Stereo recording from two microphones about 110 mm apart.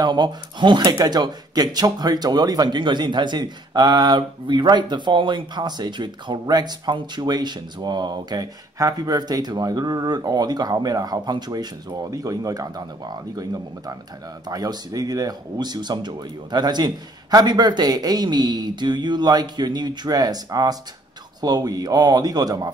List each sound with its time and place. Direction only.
0.0 s speech: 40° right (ahead or behind)